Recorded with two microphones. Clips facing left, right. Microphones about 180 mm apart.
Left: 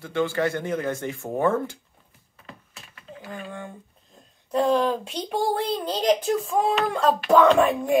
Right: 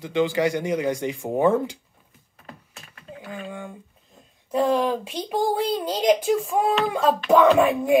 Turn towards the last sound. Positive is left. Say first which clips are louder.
# right 2 dB
turn(degrees=-10)  # may be behind; listen again after turning